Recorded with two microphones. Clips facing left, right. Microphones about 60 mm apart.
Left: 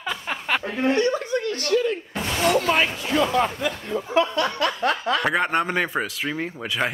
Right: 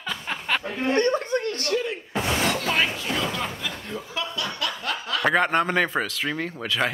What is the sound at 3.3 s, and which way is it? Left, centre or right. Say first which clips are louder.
Speech: left 8 dB; left.